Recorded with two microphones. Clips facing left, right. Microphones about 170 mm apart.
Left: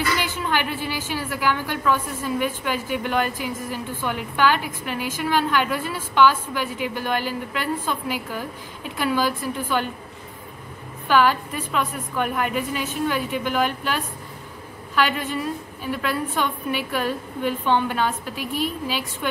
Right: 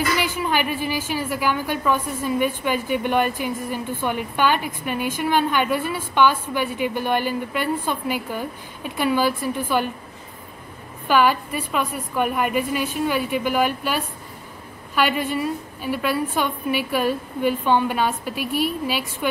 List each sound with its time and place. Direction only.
0.4 s a woman's voice: 15° right (ahead or behind)
11.1 s a woman's voice: 10° right (ahead or behind)